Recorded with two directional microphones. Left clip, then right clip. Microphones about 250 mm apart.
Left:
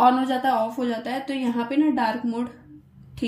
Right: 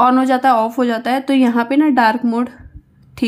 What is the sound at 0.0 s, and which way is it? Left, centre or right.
A woman's voice, centre.